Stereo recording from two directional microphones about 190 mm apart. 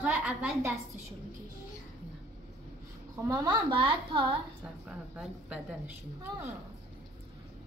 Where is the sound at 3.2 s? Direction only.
20° right (ahead or behind).